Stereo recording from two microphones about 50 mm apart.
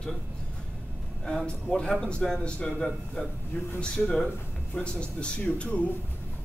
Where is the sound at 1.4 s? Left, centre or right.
Centre.